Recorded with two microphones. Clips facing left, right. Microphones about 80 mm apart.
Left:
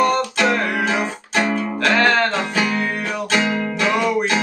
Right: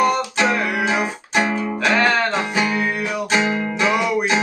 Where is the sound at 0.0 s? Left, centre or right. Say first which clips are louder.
Left 1 dB; centre.